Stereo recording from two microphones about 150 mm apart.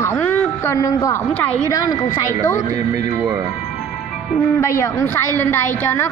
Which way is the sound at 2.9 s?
15° right (ahead or behind).